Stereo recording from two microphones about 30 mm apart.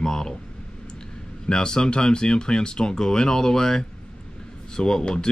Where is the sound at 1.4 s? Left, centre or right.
Left.